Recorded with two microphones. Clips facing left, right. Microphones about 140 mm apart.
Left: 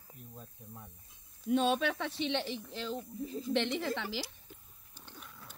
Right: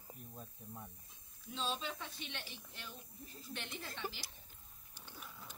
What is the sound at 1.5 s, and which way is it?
A woman's voice, 65° left (ahead or behind).